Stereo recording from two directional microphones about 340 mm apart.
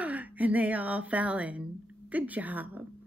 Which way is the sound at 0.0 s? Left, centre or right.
Centre.